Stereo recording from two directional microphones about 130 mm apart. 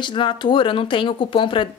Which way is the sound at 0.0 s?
40° left (ahead or behind).